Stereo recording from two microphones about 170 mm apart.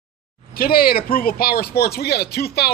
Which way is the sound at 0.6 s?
60° left (ahead or behind).